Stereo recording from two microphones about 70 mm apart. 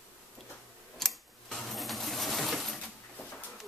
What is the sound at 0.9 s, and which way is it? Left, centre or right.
Coin, centre.